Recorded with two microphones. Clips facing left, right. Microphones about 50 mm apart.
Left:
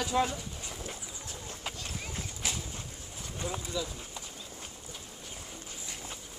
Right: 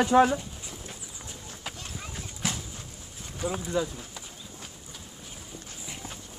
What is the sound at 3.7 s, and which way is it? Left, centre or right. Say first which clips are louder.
Speech: right 8 dB; right.